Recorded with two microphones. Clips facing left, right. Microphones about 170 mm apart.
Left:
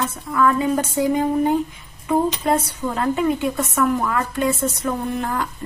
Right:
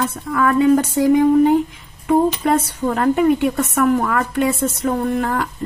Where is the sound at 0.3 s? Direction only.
60° right (ahead or behind).